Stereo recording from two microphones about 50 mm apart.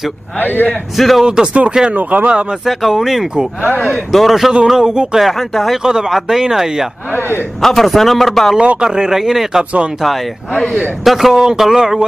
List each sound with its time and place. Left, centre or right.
0.4 s a man's voice: left
0.9 s a man's voice: centre
1.2 s speech: centre
1.9 s speech: right
2.6 s a man's voice: centre
4.6 s a man's voice: centre
5.8 s speech: centre
7.1 s a man's voice: left
7.6 s a man's voice: centre
8.8 s speech: centre
11.1 s speech: centre